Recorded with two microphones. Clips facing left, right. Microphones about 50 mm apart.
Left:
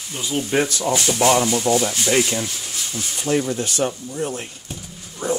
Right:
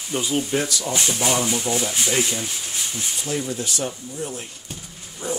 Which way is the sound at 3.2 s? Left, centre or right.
Left.